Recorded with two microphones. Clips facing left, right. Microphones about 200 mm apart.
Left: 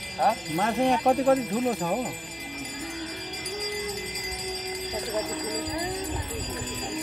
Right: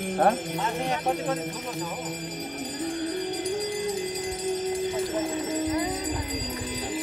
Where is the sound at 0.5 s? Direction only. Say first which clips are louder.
Left 5 dB; 55° left (ahead or behind).